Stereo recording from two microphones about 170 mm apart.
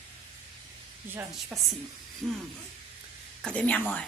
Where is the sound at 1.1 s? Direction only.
10° right (ahead or behind).